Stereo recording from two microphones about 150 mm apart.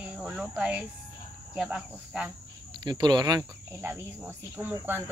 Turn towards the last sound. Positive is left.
turn(degrees=-15)  # may be behind; listen again after turning